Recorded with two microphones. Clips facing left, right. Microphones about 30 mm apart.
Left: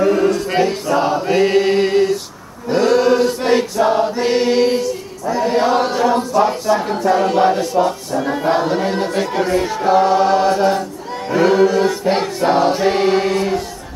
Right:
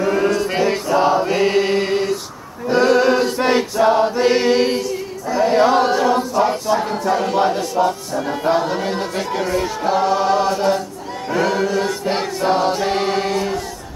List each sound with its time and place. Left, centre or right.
0.1 s mantra: centre
0.8 s choir: centre
1.2 s chant: centre
2.7 s choir: centre
5.4 s chant: centre
11.3 s choir: centre